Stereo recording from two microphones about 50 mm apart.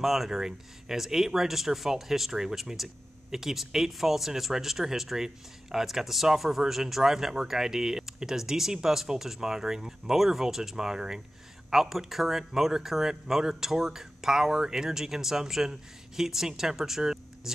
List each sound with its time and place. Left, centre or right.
0.0 s speech: centre